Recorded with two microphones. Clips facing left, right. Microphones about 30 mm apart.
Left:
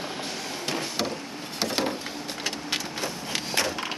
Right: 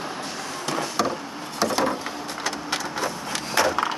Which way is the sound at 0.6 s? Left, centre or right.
Centre.